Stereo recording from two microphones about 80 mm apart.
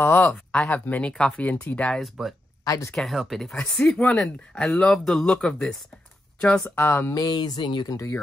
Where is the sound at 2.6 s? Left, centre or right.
Left.